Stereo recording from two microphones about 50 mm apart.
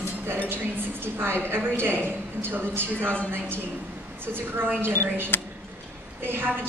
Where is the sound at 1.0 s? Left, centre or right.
Right.